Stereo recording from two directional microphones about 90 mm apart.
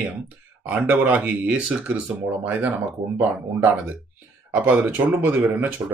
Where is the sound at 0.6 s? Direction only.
20° right (ahead or behind).